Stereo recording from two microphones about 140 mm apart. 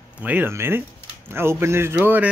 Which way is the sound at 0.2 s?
10° right (ahead or behind).